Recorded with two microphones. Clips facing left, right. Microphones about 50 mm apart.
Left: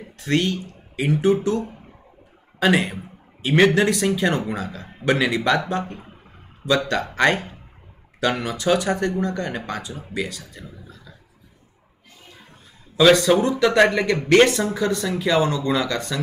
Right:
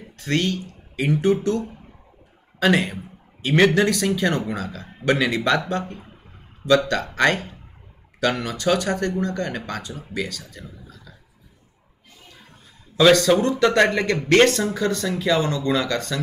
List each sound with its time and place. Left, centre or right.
0.2 s speech: centre
13.1 s speech: centre
13.6 s speech: centre
14.0 s speech: left
14.3 s speech: centre